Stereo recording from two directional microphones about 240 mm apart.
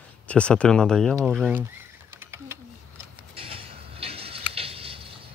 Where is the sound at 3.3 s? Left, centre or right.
Right.